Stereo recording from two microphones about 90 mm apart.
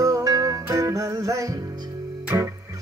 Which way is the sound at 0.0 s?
40° right (ahead or behind).